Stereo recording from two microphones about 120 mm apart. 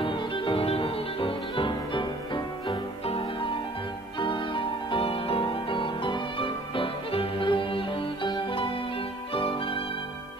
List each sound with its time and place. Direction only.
0.0 s music: 45° left (ahead or behind)